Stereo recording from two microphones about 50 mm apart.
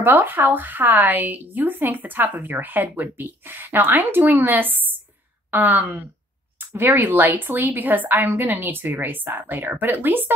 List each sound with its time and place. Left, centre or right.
0.0 s a woman's voice: right